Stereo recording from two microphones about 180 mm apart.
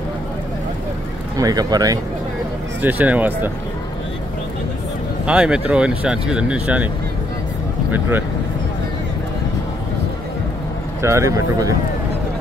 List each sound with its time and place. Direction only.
1.3 s speech: 20° right (ahead or behind)
2.8 s speech: 10° right (ahead or behind)
5.2 s speech: 5° right (ahead or behind)
11.0 s speech: 15° right (ahead or behind)